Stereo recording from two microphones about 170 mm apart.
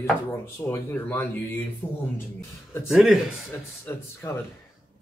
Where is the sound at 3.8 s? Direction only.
15° left (ahead or behind).